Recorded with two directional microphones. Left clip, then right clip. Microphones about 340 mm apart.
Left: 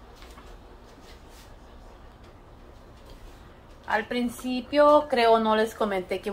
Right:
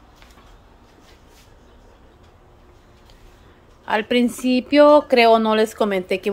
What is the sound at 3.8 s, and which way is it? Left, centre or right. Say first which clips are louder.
Speech: right 8 dB; right.